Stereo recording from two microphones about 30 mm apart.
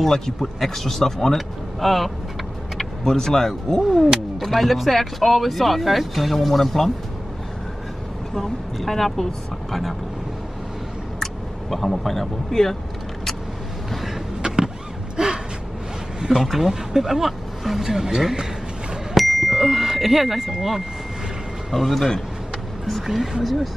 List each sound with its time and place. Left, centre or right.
0.0 s speech: centre
1.8 s speech: centre
3.1 s speech: centre
4.4 s speech: centre
8.4 s speech: centre
11.7 s speech: centre
14.4 s vehicle: right
15.1 s a sound: right
16.2 s speech: right
17.8 s speech: centre
19.1 s bicycle bell: centre
19.7 s speech: centre
21.7 s speech: centre
23.4 s speech: centre